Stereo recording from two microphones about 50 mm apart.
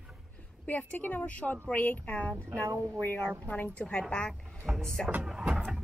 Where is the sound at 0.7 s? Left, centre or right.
Left.